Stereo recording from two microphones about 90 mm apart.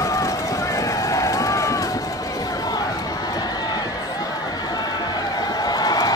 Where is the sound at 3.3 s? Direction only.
50° left (ahead or behind).